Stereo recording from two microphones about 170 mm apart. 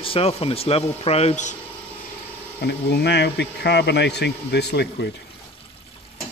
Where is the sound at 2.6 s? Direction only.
80° left.